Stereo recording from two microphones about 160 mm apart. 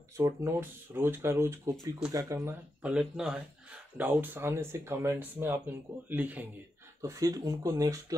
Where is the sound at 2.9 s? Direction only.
5° right (ahead or behind); by 8.2 s 20° right (ahead or behind).